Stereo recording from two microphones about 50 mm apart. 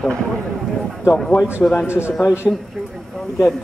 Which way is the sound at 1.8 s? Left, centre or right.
Left.